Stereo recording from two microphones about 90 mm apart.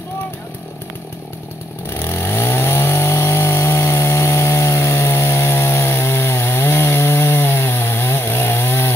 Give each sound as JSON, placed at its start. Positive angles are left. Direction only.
{"t": 1.9, "sound": "chainsaw", "side_deg": 30}